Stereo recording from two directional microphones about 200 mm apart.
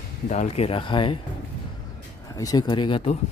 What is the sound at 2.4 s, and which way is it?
Speech, 20° left (ahead or behind).